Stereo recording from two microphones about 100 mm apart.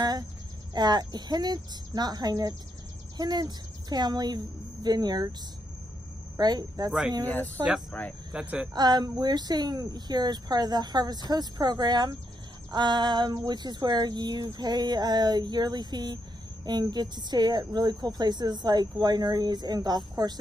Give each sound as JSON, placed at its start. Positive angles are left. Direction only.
{"t": 0.7, "sound": "a woman's voice", "side_deg": -45}
{"t": 6.3, "sound": "a woman's voice", "side_deg": -45}
{"t": 8.3, "sound": "a woman's voice", "side_deg": -10}
{"t": 8.7, "sound": "a woman's voice", "side_deg": -45}